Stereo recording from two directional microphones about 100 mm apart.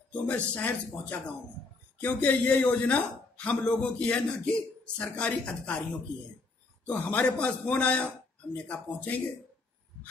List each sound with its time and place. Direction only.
0.1 s speech: 15° left (ahead or behind)
6.9 s speech: 15° left (ahead or behind)